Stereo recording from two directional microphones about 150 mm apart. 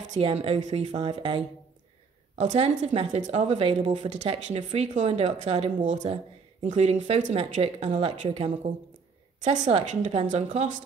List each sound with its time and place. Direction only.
0.1 s speech: 40° right (ahead or behind)